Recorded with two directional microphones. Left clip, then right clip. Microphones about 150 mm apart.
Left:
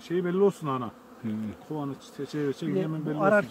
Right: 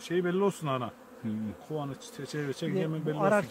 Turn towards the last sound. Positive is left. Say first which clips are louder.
# left 3 dB
turn(degrees=-50)  # may be behind; listen again after turning